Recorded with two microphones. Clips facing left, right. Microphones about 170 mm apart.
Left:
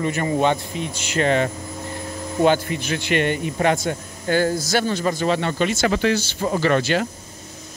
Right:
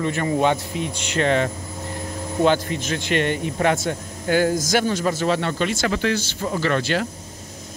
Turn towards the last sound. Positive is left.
turn(degrees=5)  # may be behind; listen again after turning